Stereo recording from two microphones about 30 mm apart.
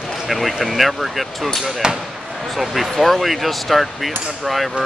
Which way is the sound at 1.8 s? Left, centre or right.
Right.